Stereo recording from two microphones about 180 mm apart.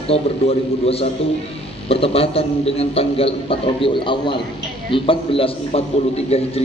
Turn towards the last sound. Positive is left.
turn(degrees=35)  # may be behind; listen again after turning